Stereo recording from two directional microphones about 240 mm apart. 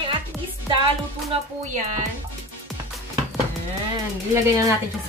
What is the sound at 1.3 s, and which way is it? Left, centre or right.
Speech, right.